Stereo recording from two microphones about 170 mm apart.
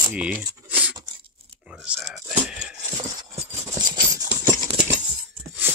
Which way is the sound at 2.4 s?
5° right (ahead or behind).